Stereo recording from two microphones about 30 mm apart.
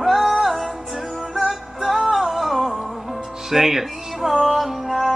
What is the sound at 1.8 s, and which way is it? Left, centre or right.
Music, centre.